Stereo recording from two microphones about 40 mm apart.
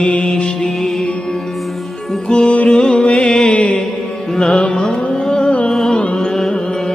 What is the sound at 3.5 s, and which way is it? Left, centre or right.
Music, left.